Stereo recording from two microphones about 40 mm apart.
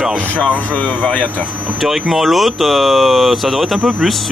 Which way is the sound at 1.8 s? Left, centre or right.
Centre.